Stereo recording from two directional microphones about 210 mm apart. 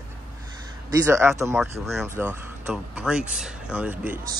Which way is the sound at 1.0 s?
15° right (ahead or behind).